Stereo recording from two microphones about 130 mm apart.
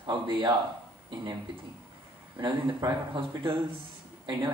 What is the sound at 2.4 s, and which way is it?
Speech, 35° right (ahead or behind).